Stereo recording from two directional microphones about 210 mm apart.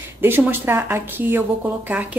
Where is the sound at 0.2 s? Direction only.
10° right (ahead or behind).